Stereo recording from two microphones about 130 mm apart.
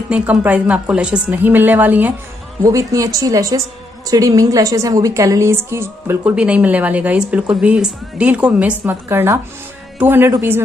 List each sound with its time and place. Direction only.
0.1 s a woman's voice: 10° right (ahead or behind)
2.6 s a woman's voice: 25° right (ahead or behind)